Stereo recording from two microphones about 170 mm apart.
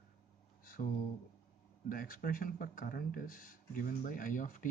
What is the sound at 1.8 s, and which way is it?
Speech, 55° left (ahead or behind).